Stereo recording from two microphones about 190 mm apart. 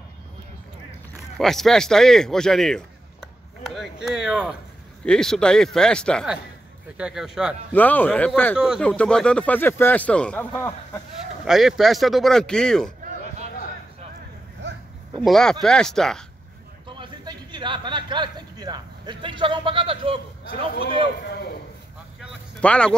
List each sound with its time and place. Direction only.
1.4 s a man's voice: centre (ahead or behind)
7.7 s speech: 10° left (ahead or behind)
8.5 s speech: 5° right (ahead or behind)
11.4 s speech: centre (ahead or behind)
15.2 s speech: centre (ahead or behind)
16.8 s a sound: 25° right (ahead or behind)
21.2 s a man's voice: 55° left (ahead or behind)
22.6 s speech: 5° left (ahead or behind)